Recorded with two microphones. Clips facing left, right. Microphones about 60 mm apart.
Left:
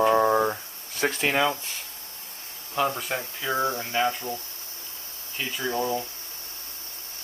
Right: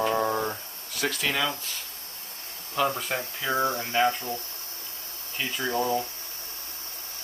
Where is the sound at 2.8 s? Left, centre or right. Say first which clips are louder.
Even; centre.